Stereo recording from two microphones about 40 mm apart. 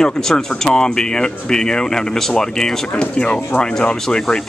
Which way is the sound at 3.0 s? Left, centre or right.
Left.